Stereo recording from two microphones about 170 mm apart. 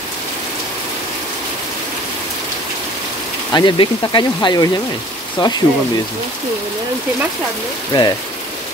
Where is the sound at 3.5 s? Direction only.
30° left (ahead or behind).